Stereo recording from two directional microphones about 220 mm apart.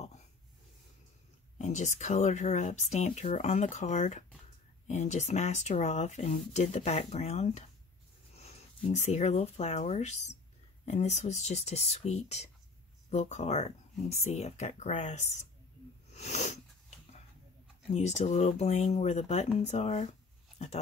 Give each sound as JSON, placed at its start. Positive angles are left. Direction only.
{"t": 1.6, "sound": "speech", "side_deg": 35}
{"t": 16.1, "sound": "sneeze", "side_deg": 30}
{"t": 17.9, "sound": "speech", "side_deg": 30}